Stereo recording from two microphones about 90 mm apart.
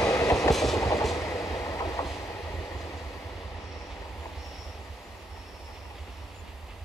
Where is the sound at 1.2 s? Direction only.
35° left (ahead or behind).